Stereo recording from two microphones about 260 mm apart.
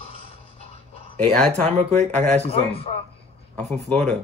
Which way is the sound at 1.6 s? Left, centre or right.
Right.